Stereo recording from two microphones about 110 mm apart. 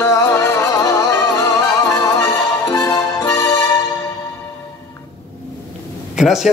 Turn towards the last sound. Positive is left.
turn(degrees=-5)  # may be behind; listen again after turning